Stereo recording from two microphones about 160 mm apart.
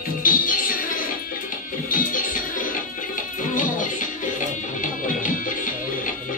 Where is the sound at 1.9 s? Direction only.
60° left (ahead or behind).